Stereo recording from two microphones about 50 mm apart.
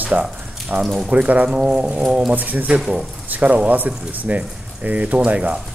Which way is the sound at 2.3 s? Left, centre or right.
Right.